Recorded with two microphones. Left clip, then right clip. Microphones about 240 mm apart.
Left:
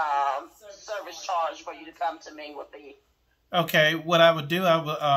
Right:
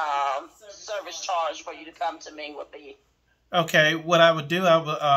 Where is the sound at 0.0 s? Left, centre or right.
Centre.